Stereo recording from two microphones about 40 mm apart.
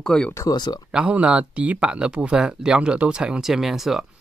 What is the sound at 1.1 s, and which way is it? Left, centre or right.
Speech, right.